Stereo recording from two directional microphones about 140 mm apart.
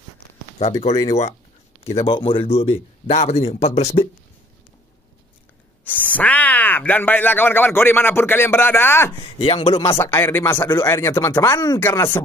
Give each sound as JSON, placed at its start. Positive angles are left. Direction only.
{"t": 0.6, "sound": "a man's voice", "side_deg": 50}
{"t": 5.9, "sound": "speech", "side_deg": 10}
{"t": 9.2, "sound": "speech", "side_deg": 40}
{"t": 9.9, "sound": "speech", "side_deg": 20}